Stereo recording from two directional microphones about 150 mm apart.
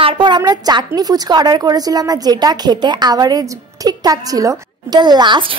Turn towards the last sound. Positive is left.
turn(degrees=-30)  # may be behind; listen again after turning